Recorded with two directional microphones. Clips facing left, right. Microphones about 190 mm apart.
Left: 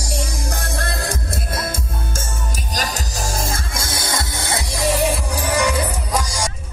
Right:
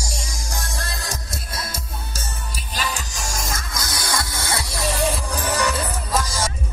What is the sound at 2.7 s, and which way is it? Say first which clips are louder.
Music: left 2 dB; 40° left (ahead or behind).